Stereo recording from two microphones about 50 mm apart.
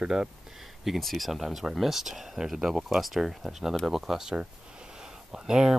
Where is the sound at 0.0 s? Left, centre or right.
Centre.